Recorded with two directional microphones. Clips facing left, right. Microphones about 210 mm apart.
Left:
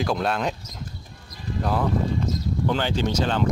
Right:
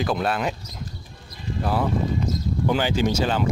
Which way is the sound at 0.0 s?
Centre (ahead or behind).